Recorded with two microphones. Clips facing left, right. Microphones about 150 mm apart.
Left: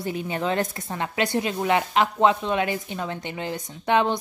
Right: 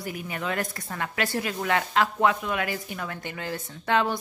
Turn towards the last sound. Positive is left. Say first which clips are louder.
# left 3 dB
turn(degrees=20)  # may be behind; listen again after turning